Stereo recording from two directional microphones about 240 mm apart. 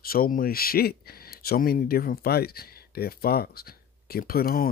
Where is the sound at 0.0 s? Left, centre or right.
Left.